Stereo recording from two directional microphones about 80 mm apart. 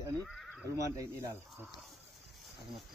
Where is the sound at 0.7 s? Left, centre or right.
Right.